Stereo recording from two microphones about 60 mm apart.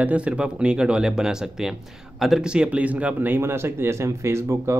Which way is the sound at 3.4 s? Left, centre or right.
Right.